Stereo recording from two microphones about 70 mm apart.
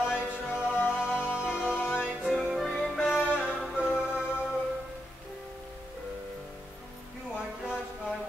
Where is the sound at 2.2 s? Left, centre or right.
Centre.